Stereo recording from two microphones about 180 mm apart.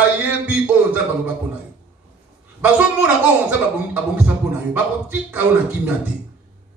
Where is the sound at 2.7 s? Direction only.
5° right (ahead or behind).